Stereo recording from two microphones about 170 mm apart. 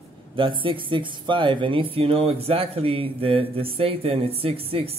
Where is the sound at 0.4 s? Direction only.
30° right (ahead or behind).